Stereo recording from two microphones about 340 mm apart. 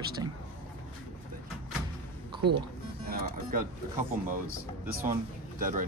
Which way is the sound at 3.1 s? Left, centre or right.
Right.